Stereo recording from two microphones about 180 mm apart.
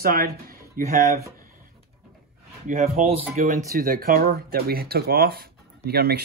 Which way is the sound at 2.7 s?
45° right (ahead or behind).